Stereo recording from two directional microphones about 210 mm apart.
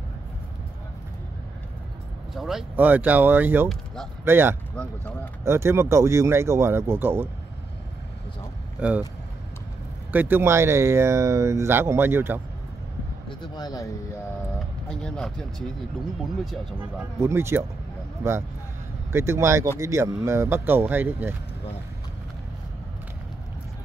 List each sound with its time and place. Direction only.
2.3 s speech: centre (ahead or behind)
4.7 s speech: 5° left (ahead or behind)
5.4 s speech: 10° right (ahead or behind)
8.7 s speech: 5° right (ahead or behind)
10.1 s speech: 10° right (ahead or behind)
13.3 s speech: 20° left (ahead or behind)
14.9 s speech: 5° left (ahead or behind)
17.2 s speech: 10° right (ahead or behind)
19.1 s speech: 10° right (ahead or behind)